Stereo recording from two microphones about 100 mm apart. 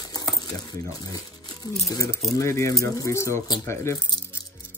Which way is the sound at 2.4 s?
30° left (ahead or behind).